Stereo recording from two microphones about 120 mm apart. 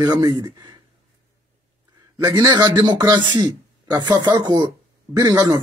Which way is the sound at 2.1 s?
35° right (ahead or behind).